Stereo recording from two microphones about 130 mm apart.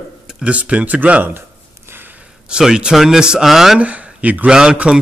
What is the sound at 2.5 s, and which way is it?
Speech, 5° right (ahead or behind).